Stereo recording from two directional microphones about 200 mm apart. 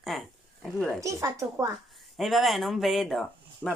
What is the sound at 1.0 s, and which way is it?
Speech, 15° right (ahead or behind).